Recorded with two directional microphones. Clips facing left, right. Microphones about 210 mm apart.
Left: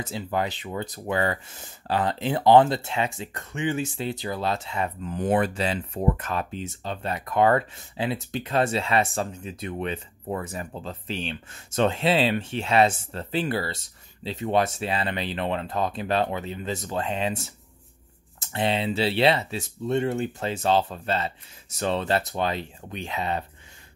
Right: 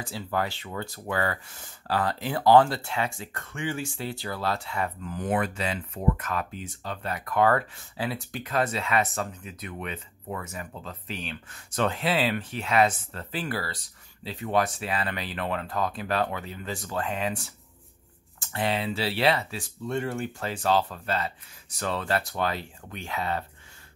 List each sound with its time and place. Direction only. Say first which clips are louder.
0.0 s speech: left 2 dB; 20° left (ahead or behind)